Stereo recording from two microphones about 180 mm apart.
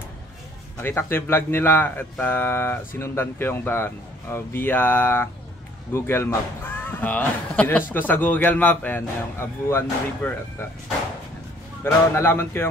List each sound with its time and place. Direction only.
0.7 s speech: 15° left (ahead or behind)
11.8 s speech: 15° left (ahead or behind)